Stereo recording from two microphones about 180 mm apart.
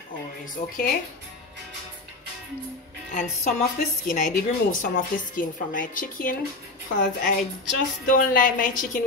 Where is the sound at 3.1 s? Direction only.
40° left (ahead or behind).